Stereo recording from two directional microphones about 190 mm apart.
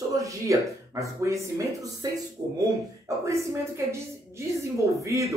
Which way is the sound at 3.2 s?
15° right (ahead or behind).